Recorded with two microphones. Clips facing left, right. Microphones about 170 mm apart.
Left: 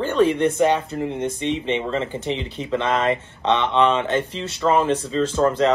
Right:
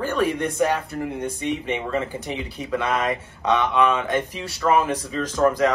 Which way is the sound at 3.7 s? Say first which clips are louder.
Left 2 dB; 25° left (ahead or behind).